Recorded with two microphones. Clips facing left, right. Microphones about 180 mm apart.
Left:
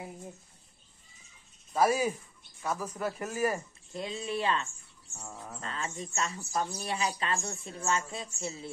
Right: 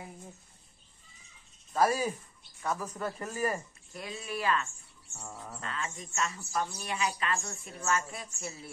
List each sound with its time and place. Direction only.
1.8 s speech: 10° left (ahead or behind)
3.9 s speech: 25° left (ahead or behind)
5.1 s speech: centre (ahead or behind)
5.6 s a woman's voice: 35° left (ahead or behind)